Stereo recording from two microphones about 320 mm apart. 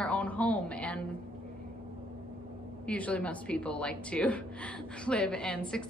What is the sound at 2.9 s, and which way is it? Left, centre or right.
A woman's voice, centre.